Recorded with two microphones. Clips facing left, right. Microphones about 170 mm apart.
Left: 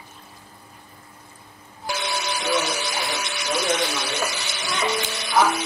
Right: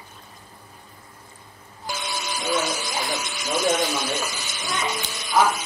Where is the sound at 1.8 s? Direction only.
70° left (ahead or behind).